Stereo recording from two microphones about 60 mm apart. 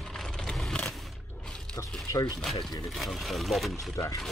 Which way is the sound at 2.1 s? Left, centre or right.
Left.